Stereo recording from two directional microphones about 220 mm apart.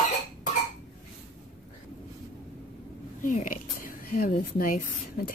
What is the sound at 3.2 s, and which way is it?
A woman's voice, 35° left (ahead or behind).